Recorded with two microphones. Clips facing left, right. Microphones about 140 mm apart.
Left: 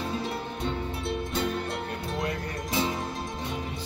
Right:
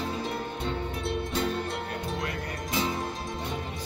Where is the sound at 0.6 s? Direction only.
Centre (ahead or behind).